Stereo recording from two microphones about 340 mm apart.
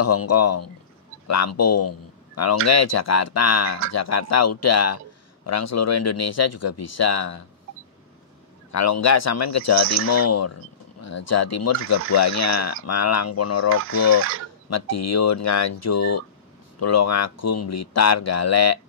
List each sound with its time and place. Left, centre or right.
0.0 s speech: left
8.7 s speech: left
14.7 s speech: left